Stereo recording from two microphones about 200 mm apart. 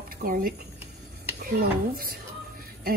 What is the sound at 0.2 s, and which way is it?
Speech, 45° right (ahead or behind).